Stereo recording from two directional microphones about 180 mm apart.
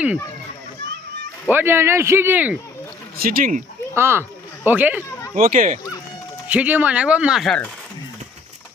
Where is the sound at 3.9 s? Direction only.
15° right (ahead or behind).